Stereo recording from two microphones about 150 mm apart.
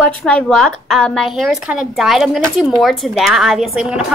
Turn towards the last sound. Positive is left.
turn(degrees=0)  # may be behind; listen again after turning